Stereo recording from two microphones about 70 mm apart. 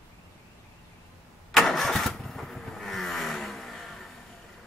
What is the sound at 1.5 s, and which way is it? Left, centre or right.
Vehicle, centre.